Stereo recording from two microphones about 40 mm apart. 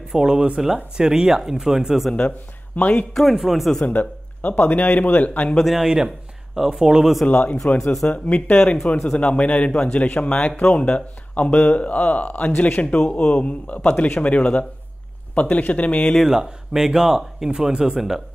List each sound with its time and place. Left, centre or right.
0.1 s speech: centre
2.1 s speech: left
3.2 s speech: centre
3.8 s speech: left
5.7 s speech: centre
7.2 s speech: left
8.9 s speech: centre
9.2 s speech: left
16.2 s speech: centre